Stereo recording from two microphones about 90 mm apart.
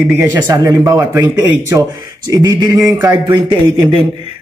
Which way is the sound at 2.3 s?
50° right (ahead or behind).